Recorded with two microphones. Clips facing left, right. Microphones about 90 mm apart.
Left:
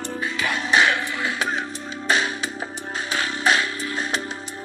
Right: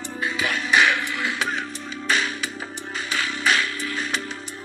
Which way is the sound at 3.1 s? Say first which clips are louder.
Left 2 dB; 30° left (ahead or behind).